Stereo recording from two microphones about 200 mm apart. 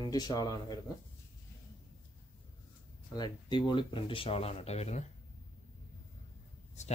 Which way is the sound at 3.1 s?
20° left (ahead or behind).